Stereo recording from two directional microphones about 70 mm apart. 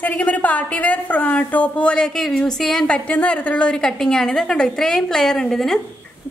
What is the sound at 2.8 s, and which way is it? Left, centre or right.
A woman's voice, centre.